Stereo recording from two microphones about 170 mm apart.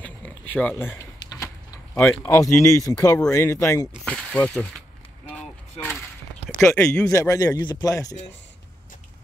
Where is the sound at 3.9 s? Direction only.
5° left (ahead or behind).